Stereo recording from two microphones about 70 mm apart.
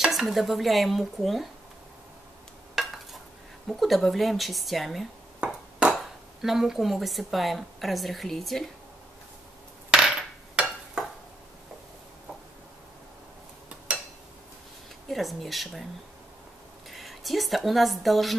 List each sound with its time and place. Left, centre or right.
0.0 s speech: centre
2.7 s stir: centre
3.6 s speech: centre
5.4 s ping: centre
5.9 s speech: centre
9.9 s hammer: centre
15.0 s speech: centre
16.9 s speech: centre